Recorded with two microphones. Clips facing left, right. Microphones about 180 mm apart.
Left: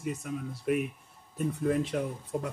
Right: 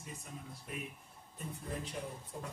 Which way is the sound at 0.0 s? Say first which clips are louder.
Left 14 dB; 80° left.